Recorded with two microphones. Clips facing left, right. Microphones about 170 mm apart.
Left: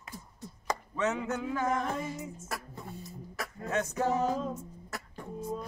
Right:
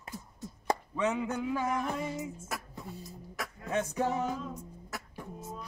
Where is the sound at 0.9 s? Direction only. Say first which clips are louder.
Left 2 dB; 15° right (ahead or behind).